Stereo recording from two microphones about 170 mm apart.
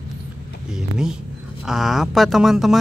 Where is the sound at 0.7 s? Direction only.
5° right (ahead or behind).